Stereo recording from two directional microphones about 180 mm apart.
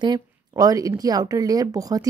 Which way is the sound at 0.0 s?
20° right (ahead or behind).